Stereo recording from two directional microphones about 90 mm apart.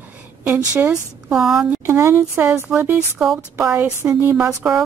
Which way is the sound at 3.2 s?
15° right (ahead or behind).